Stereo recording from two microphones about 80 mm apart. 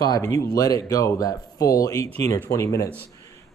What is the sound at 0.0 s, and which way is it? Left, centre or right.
Speech, left.